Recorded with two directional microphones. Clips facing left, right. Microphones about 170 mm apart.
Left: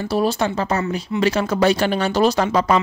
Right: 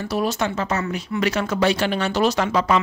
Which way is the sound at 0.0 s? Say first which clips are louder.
Left 3 dB; 30° left (ahead or behind).